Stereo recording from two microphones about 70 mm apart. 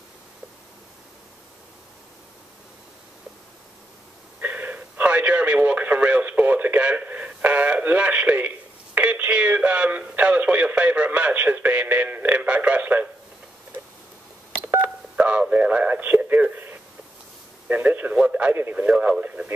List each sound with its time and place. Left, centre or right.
4.4 s radio: right
7.0 s speech: right
14.8 s telephone dialing: centre
17.6 s speech: right